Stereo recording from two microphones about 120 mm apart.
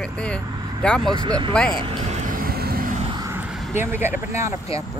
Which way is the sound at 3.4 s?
5° right (ahead or behind).